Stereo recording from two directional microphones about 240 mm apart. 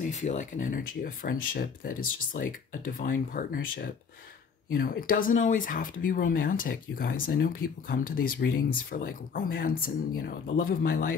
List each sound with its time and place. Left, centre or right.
0.0 s speech: left